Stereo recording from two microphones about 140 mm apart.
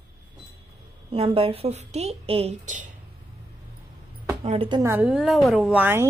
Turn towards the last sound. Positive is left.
turn(degrees=-5)  # may be behind; listen again after turning